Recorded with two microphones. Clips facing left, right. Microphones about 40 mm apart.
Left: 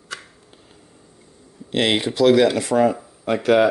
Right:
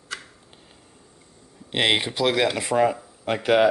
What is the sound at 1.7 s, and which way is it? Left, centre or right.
A man's voice, centre.